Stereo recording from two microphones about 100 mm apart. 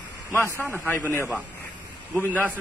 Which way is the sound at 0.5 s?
25° right (ahead or behind).